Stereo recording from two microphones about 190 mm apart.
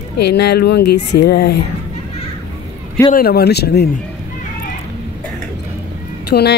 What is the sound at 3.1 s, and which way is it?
Speech, 55° left (ahead or behind).